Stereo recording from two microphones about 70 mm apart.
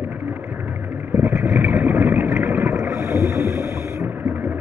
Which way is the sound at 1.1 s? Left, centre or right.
Right.